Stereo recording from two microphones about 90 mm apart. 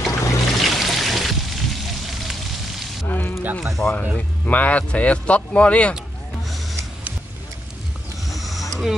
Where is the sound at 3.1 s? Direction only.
20° left (ahead or behind).